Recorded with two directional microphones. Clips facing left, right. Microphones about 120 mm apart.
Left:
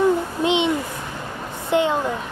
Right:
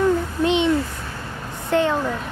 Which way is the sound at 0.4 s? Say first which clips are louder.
Right 1 dB; 20° left (ahead or behind).